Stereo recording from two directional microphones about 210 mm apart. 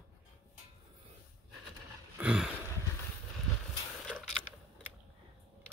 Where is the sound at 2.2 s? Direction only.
5° right (ahead or behind).